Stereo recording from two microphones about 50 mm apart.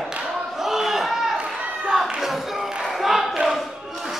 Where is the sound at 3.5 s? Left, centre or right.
Centre.